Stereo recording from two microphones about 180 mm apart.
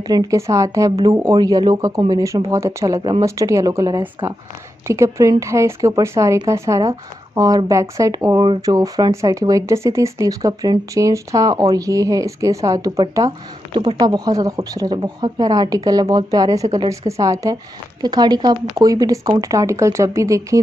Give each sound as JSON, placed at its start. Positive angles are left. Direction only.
{"t": 0.1, "sound": "speech", "side_deg": -20}